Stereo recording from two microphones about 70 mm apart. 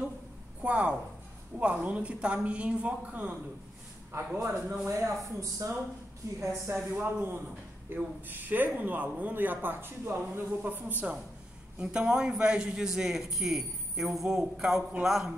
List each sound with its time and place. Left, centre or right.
0.6 s a man's voice: centre
4.4 s speech: right
6.4 s a man's voice: right
11.8 s a man's voice: centre